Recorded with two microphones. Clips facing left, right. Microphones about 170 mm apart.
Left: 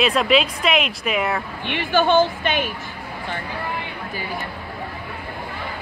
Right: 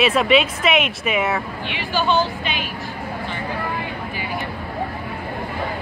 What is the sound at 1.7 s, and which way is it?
Speech, 55° left (ahead or behind).